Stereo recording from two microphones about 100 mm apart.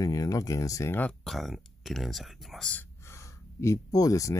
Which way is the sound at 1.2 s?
Centre (ahead or behind).